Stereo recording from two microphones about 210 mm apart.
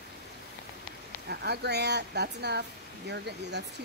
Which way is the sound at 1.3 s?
50° right (ahead or behind).